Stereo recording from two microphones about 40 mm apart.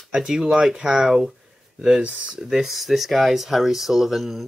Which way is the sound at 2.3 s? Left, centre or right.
Centre.